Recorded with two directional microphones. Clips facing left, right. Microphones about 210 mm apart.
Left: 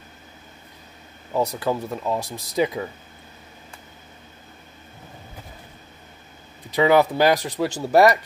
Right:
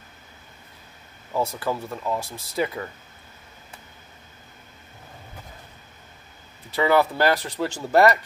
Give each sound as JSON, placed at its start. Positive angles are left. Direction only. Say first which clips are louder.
{"t": 1.6, "sound": "speech", "louder": "left 3 dB", "side_deg": 15}
{"t": 6.7, "sound": "speech", "louder": "left 3 dB", "side_deg": 15}